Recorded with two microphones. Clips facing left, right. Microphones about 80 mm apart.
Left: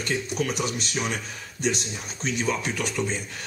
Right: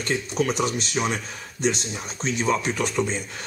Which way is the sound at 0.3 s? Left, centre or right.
Right.